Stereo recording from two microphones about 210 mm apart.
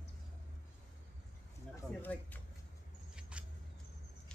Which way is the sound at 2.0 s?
10° left (ahead or behind).